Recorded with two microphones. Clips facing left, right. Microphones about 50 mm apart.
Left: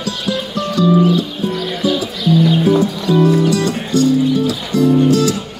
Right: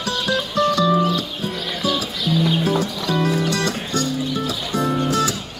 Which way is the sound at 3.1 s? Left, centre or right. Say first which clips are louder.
Left 8 dB; right.